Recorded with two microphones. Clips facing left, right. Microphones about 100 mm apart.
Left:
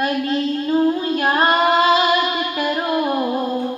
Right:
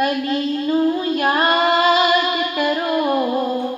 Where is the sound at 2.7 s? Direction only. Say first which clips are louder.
Right 1 dB; 25° left (ahead or behind).